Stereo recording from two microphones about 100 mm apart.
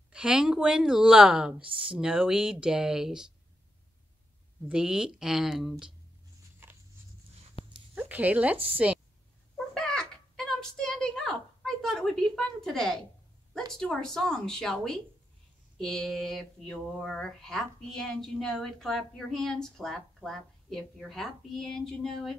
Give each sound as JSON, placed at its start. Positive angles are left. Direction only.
{"t": 0.1, "sound": "speech", "side_deg": -10}
{"t": 4.6, "sound": "speech", "side_deg": -10}
{"t": 7.6, "sound": "a sound", "side_deg": 70}
{"t": 7.9, "sound": "a woman's voice", "side_deg": -15}
{"t": 9.8, "sound": "a sound", "side_deg": 5}
{"t": 13.7, "sound": "speech", "side_deg": 5}